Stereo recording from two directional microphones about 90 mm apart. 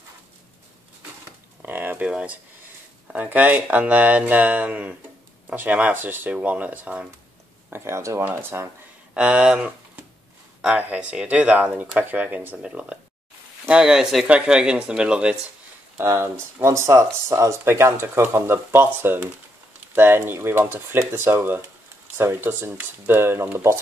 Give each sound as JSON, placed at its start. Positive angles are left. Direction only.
{"t": 1.6, "sound": "a sound", "side_deg": -20}
{"t": 2.0, "sound": "speech", "side_deg": -10}
{"t": 7.7, "sound": "speech", "side_deg": -30}
{"t": 9.1, "sound": "speech", "side_deg": -10}
{"t": 16.0, "sound": "speech", "side_deg": -30}